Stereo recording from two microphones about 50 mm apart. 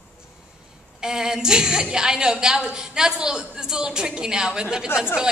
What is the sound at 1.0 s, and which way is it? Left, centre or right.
A woman's voice, centre.